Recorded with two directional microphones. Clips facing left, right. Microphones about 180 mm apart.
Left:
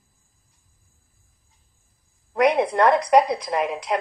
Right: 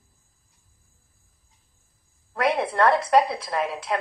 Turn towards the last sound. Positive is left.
turn(degrees=15)  # may be behind; listen again after turning